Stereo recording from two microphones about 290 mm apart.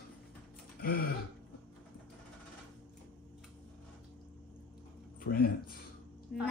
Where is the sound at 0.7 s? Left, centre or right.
Left.